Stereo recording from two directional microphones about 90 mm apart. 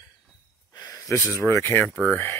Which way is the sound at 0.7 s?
40° left (ahead or behind).